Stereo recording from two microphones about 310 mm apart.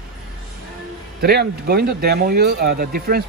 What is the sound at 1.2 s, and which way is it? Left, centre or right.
Speech, right.